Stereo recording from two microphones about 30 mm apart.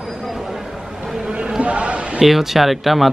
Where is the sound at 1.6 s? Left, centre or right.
Right.